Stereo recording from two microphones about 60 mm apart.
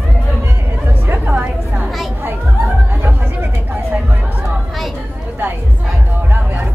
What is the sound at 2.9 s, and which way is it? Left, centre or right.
Chatter, right.